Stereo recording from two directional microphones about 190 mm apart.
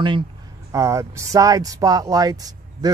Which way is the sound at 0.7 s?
15° right (ahead or behind).